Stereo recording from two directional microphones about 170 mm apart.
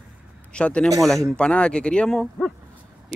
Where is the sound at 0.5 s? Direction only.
5° left (ahead or behind).